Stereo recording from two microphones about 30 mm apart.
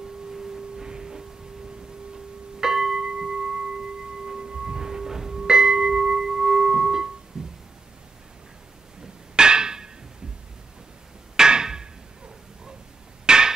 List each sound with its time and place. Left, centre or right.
0.4 s foghorn: centre
2.6 s music: centre
4.4 s singing bowl: right
7.3 s a sound: right
9.0 s hammer: right
11.3 s hammer: right
13.2 s a sound: right